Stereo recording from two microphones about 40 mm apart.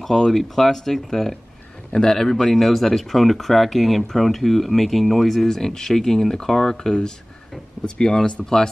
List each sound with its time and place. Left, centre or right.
0.0 s speech: centre